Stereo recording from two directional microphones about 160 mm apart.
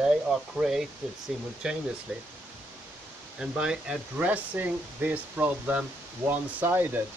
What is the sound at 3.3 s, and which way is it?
Speech, 5° right (ahead or behind).